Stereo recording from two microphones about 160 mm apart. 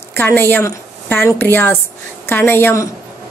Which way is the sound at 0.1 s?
15° left (ahead or behind).